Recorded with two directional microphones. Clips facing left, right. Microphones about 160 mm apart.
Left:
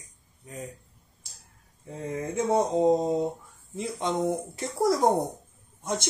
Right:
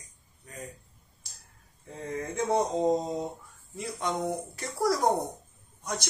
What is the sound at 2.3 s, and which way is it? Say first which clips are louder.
Speech: left 3 dB; 20° left (ahead or behind).